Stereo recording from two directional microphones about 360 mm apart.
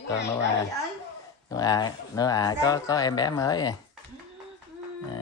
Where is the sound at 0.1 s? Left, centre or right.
Left.